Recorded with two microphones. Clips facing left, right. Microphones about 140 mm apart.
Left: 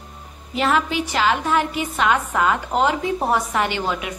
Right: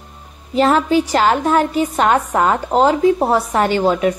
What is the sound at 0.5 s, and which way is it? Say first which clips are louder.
A woman's voice: right 7 dB; 40° right (ahead or behind).